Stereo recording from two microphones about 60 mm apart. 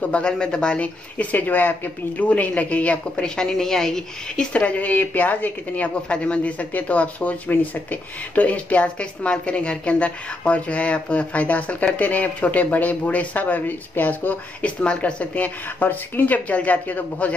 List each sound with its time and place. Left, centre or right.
0.0 s a woman's voice: left
3.3 s a woman's voice: centre
4.5 s a woman's voice: left